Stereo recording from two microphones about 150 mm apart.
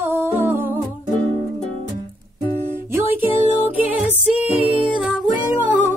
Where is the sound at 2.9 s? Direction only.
15° right (ahead or behind).